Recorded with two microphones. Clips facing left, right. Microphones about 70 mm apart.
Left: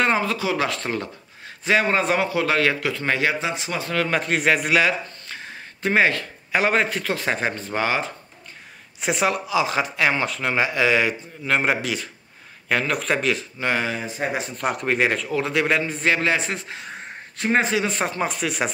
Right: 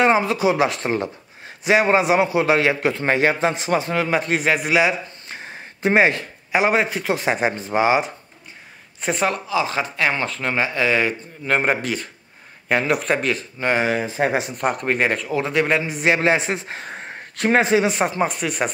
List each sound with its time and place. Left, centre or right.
0.0 s a man's voice: centre
4.1 s speech: centre
4.8 s speech: right
9.0 s speech: centre
12.6 s speech: centre
13.8 s speech: right
14.6 s a man's voice: centre
16.2 s a man's voice: right
16.6 s speech: right
17.6 s a man's voice: right
17.8 s speech: centre